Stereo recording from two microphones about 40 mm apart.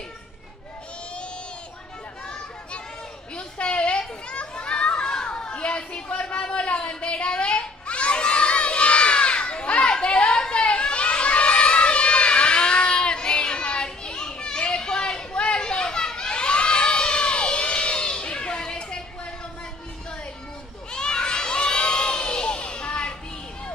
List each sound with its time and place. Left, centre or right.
3.3 s a sound: left
4.3 s children playing: left
20.9 s children shouting: left